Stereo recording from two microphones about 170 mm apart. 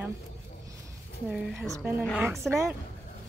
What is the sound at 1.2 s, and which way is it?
Speech, 5° right (ahead or behind).